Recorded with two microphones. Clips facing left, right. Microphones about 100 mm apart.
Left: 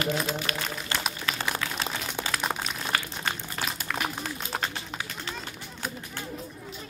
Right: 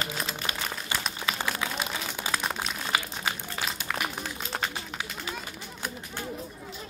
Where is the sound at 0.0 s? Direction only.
20° right (ahead or behind); by 4.6 s centre (ahead or behind).